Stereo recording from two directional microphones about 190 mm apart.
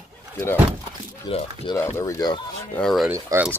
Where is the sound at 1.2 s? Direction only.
25° left (ahead or behind).